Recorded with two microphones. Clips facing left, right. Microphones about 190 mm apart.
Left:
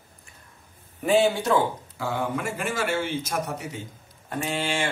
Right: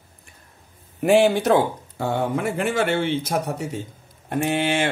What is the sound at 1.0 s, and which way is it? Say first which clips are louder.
Speech: right 5 dB; 75° right (ahead or behind).